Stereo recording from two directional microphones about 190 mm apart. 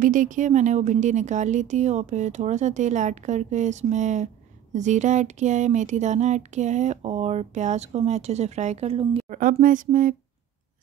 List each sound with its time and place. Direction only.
0.0 s speech: 45° right (ahead or behind)
9.4 s speech: 45° right (ahead or behind)